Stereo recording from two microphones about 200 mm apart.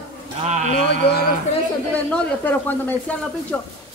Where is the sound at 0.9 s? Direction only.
55° left (ahead or behind).